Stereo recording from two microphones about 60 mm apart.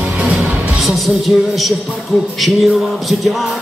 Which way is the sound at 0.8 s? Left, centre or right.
Centre.